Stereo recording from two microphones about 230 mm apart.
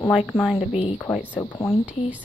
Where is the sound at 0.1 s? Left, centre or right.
Centre.